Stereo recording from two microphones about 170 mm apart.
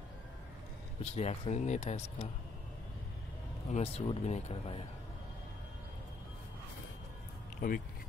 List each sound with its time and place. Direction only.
1.0 s speech: 40° left (ahead or behind)
3.7 s speech: 35° left (ahead or behind)
7.6 s speech: 55° left (ahead or behind)